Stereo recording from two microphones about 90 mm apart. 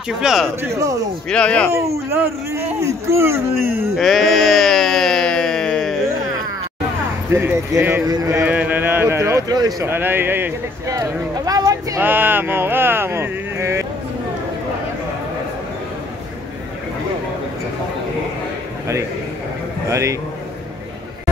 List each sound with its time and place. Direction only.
0.2 s speech: 5° right (ahead or behind)
0.6 s speech: 35° right (ahead or behind)
1.3 s speech: 15° left (ahead or behind)
1.7 s speech: 30° right (ahead or behind)
3.9 s a sound: centre (ahead or behind)
7.3 s speech: 30° right (ahead or behind)
8.5 s speech: 15° right (ahead or behind)
9.5 s speech: 45° right (ahead or behind)
9.8 s speech: 25° right (ahead or behind)
10.9 s speech: 40° right (ahead or behind)
12.0 s a sound: 20° right (ahead or behind)
19.9 s speech: 35° right (ahead or behind)